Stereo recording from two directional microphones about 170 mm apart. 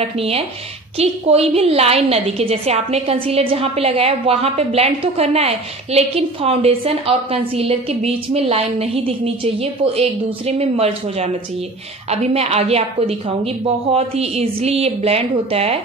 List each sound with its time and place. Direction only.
0.0 s a woman's voice: 35° right (ahead or behind)